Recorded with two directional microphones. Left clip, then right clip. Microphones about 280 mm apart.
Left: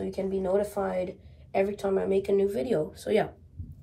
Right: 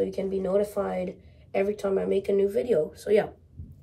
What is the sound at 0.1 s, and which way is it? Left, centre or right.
Speech, centre.